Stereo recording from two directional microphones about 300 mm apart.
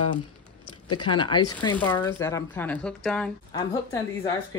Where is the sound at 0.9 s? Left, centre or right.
Centre.